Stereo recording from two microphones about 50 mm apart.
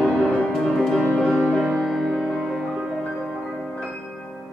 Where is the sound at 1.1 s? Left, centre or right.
Centre.